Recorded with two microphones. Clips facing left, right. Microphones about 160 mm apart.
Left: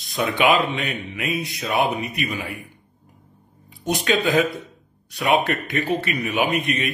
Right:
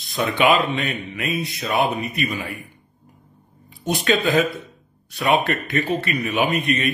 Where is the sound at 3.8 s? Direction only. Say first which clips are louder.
Right 1 dB; 15° left (ahead or behind).